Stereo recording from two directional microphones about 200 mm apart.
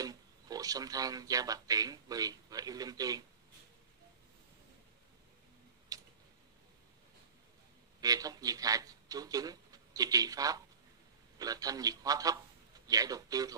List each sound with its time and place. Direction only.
0.0 s speech: 20° right (ahead or behind)
5.9 s tick-tock: 15° right (ahead or behind)
8.0 s a man's voice: 20° right (ahead or behind)